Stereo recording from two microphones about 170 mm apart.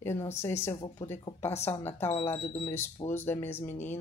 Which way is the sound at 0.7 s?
30° left (ahead or behind).